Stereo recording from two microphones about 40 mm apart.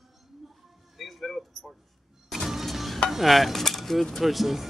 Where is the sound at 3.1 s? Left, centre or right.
Centre.